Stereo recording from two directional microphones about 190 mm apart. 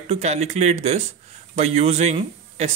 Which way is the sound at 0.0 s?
35° right (ahead or behind).